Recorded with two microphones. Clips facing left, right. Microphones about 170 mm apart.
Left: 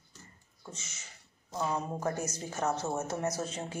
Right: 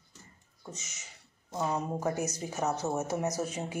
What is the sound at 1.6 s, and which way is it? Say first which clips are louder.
Speech: right 2 dB; 5° right (ahead or behind).